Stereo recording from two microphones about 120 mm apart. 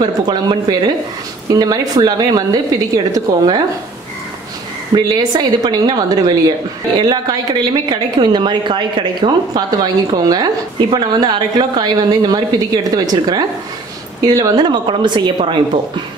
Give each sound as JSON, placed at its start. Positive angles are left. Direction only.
{"t": 0.0, "sound": "a woman's voice", "side_deg": -35}
{"t": 4.9, "sound": "a woman's voice", "side_deg": -35}